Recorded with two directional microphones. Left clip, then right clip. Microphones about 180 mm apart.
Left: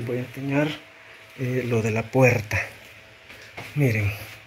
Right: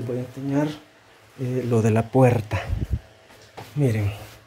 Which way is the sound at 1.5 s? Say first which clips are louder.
Right 1 dB; 15° right (ahead or behind).